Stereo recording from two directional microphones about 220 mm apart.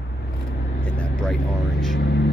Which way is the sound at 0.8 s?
5° left (ahead or behind).